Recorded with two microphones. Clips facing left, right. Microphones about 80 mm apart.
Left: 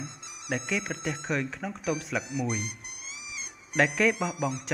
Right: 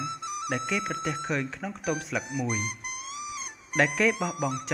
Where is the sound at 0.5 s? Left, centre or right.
Centre.